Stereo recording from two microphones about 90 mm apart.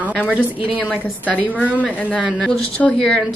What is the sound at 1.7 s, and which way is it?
Speech, 15° left (ahead or behind).